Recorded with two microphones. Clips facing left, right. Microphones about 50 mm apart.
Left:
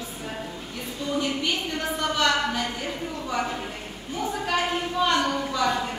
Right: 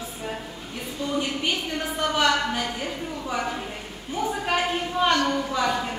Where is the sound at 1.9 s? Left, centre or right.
Centre.